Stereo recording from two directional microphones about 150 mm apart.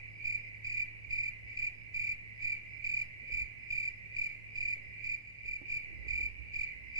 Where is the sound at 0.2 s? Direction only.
25° right (ahead or behind).